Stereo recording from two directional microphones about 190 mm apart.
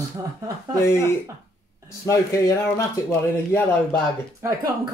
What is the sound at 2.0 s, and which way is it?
Speech, 15° left (ahead or behind).